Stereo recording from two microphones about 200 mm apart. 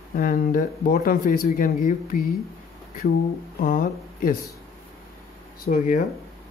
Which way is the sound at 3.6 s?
45° left (ahead or behind).